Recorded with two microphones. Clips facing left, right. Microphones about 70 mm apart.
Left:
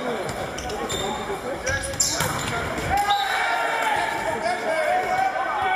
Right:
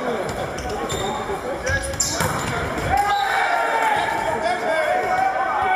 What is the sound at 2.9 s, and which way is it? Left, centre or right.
Basketball bounce, centre.